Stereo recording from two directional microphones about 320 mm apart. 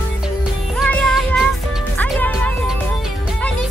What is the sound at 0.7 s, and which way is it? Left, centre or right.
Music, centre.